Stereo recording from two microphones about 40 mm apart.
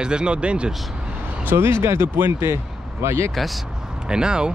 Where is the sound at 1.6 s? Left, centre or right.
Right.